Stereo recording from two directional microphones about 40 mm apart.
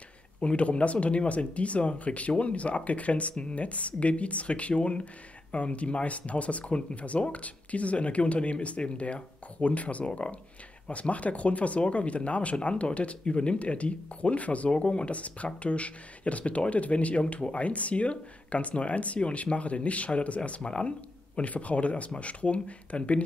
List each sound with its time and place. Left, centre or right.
0.4 s speech: left